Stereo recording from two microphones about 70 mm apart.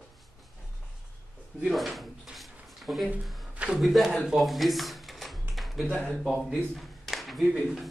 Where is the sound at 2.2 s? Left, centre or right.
Centre.